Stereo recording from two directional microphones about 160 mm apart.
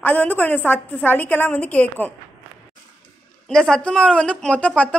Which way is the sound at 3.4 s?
5° left (ahead or behind).